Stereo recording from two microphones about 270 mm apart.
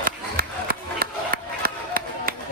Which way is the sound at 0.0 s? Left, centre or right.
Right.